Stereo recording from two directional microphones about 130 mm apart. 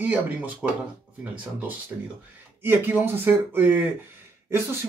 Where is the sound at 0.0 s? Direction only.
15° right (ahead or behind).